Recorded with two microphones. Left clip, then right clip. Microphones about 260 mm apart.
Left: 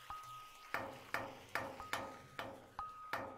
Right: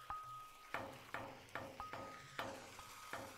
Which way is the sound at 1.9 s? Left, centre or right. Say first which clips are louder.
Left 6 dB; left.